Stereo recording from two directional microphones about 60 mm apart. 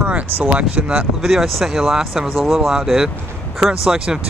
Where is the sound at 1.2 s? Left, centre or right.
Centre.